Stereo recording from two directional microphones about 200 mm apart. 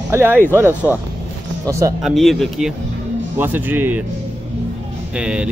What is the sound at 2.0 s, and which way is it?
Speech, centre (ahead or behind).